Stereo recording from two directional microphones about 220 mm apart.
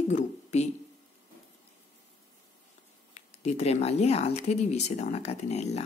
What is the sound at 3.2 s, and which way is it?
Speech, 30° left (ahead or behind).